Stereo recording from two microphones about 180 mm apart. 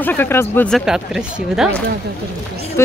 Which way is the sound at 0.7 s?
5° right (ahead or behind).